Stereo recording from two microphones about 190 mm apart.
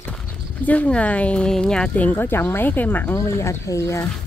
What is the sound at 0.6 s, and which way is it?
Speech, 5° left (ahead or behind).